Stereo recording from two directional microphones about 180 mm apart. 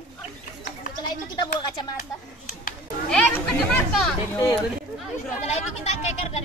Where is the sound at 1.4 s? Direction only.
25° left (ahead or behind).